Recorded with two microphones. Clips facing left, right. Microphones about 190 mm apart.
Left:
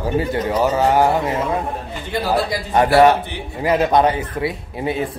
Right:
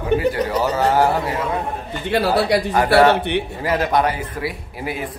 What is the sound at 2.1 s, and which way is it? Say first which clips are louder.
Speech: right 3 dB; 70° right (ahead or behind).